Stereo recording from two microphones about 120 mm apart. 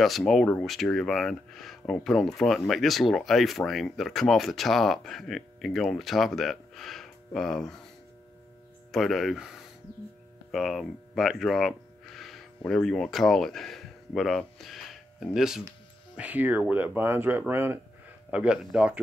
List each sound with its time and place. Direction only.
0.3 s speech: 5° left (ahead or behind)
8.9 s speech: centre (ahead or behind); by 17.7 s 20° right (ahead or behind)
18.3 s speech: 10° right (ahead or behind)